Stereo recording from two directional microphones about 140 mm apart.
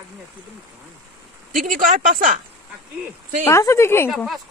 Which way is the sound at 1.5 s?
80° right.